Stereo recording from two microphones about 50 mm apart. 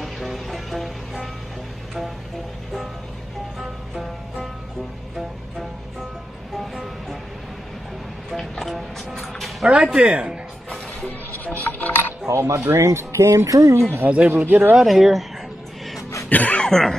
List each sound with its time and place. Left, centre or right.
0.0 s music: centre
3.5 s music: centre
5.1 s music: centre
8.4 s music: centre
9.9 s a man's voice: right
11.1 s music: left
12.3 s speech: right
14.0 s a man's voice: right
14.3 s speech: right
14.8 s speech: centre
16.3 s speech: left
16.5 s speech: centre